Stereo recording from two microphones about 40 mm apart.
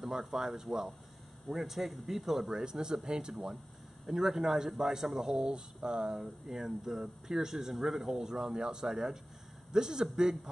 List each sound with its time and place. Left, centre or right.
0.0 s speech: centre
2.6 s speech: centre